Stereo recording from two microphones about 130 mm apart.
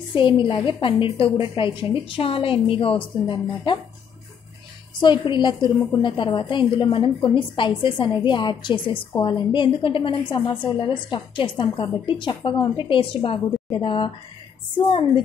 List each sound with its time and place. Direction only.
0.1 s a woman's voice: 40° left (ahead or behind)
5.0 s a woman's voice: 35° left (ahead or behind)